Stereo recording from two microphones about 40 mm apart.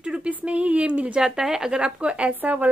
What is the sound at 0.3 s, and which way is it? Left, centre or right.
Speech, right.